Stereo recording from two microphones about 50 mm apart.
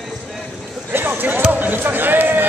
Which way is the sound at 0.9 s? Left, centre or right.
Right.